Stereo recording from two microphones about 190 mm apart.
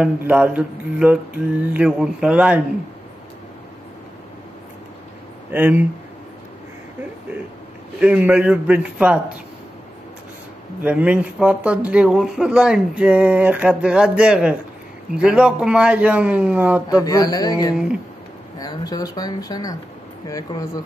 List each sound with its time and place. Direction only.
0.0 s mantra: 10° right (ahead or behind)
5.5 s mantra: 10° right (ahead or behind)
8.0 s mantra: 5° right (ahead or behind)
10.8 s speech: 10° right (ahead or behind)
15.1 s mantra: 5° right (ahead or behind)
16.9 s speech: 20° left (ahead or behind)